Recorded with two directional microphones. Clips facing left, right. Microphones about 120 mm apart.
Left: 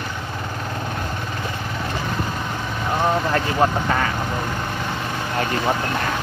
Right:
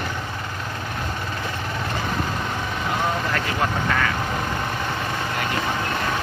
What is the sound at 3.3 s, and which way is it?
Speech, 30° left (ahead or behind).